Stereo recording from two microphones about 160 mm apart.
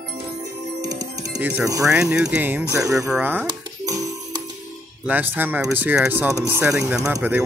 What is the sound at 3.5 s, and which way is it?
Music, 20° right (ahead or behind).